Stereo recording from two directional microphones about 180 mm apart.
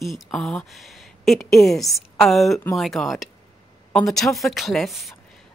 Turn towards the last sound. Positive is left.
turn(degrees=0)  # may be behind; listen again after turning